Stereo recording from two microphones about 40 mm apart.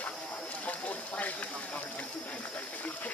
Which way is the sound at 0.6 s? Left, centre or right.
Left.